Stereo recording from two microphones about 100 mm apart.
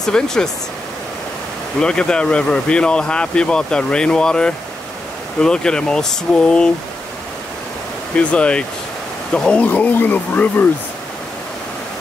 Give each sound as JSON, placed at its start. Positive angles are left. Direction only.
{"t": 0.0, "sound": "speech", "side_deg": 5}
{"t": 1.8, "sound": "speech", "side_deg": 10}
{"t": 8.3, "sound": "speech", "side_deg": 10}